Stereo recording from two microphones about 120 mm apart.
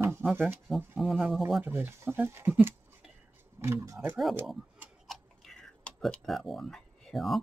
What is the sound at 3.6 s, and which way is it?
Speech, 25° right (ahead or behind).